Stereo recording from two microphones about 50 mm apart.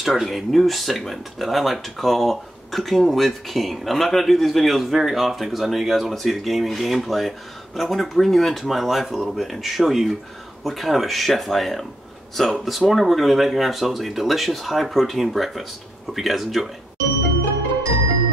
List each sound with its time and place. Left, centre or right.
0.0 s speech: centre